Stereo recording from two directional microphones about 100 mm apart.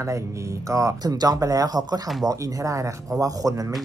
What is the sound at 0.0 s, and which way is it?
Speech, 30° right (ahead or behind).